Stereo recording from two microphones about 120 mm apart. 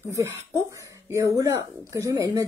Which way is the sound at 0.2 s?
25° right (ahead or behind).